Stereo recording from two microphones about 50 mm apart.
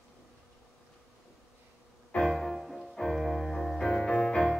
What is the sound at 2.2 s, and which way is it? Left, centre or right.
Music, centre.